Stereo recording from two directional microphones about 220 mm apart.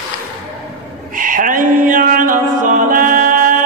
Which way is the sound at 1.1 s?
40° right (ahead or behind).